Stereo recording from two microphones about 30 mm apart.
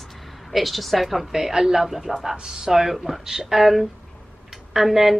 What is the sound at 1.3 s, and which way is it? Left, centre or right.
Speech, centre.